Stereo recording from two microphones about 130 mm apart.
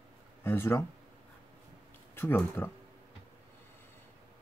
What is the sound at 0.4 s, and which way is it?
Speech, 20° left (ahead or behind).